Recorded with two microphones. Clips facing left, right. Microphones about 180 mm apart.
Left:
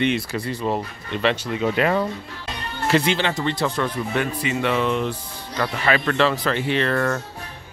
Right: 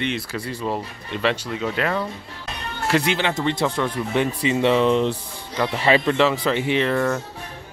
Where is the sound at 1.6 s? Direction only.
10° left (ahead or behind).